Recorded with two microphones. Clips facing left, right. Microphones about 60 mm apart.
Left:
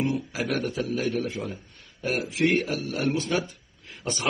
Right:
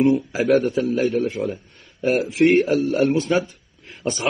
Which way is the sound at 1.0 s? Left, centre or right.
Right.